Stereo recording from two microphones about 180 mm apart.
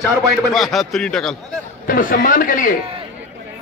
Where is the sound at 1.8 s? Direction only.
50° left (ahead or behind).